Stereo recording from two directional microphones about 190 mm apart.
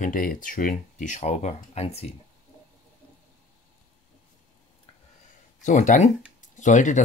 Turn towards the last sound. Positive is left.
turn(degrees=40)  # may be behind; listen again after turning